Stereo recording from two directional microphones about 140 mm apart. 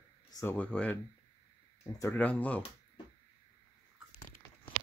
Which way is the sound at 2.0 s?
15° left (ahead or behind).